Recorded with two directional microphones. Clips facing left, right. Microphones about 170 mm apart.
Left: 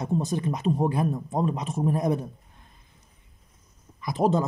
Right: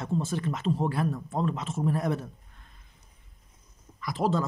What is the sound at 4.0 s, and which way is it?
Speech, 20° left (ahead or behind).